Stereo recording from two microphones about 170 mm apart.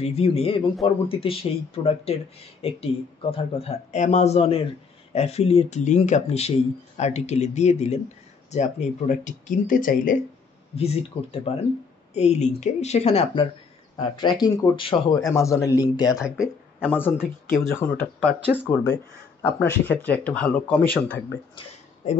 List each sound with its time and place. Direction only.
0.0 s speech: 35° left (ahead or behind); by 10.1 s 55° left (ahead or behind)
10.8 s a man's voice: 35° left (ahead or behind); by 16.1 s 20° left (ahead or behind)
16.1 s speech: 5° right (ahead or behind)
17.0 s speech: 15° left (ahead or behind)